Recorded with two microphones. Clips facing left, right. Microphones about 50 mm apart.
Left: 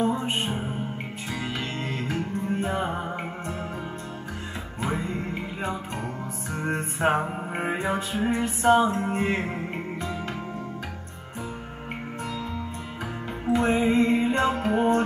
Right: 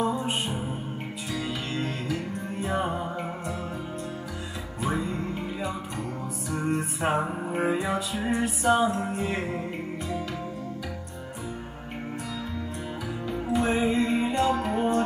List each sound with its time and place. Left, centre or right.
0.0 s music: left
2.0 s music: left
6.5 s music: left
13.5 s music: left